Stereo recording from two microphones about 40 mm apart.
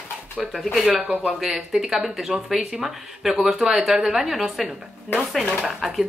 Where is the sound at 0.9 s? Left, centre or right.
Right.